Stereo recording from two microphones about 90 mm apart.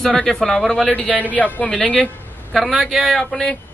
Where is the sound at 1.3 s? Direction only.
15° left (ahead or behind).